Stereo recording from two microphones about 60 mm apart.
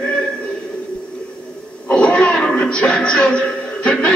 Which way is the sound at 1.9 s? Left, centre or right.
Left.